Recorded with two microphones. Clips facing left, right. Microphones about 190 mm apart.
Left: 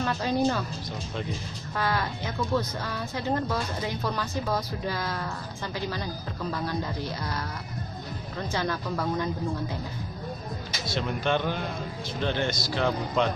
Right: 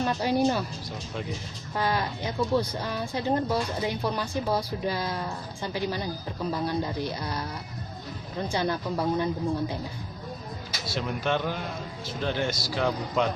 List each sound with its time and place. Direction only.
0.0 s speech: 15° right (ahead or behind)
1.8 s speech: 15° right (ahead or behind)
10.9 s speech: 5° right (ahead or behind)